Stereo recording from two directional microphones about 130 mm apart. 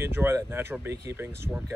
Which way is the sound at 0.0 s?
20° right (ahead or behind).